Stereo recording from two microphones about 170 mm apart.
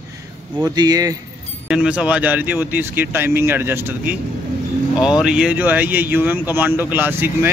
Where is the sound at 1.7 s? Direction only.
5° right (ahead or behind).